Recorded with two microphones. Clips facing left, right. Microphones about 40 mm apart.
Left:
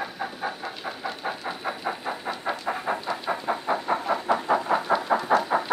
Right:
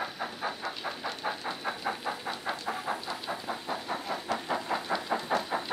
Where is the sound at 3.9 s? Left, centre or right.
Left.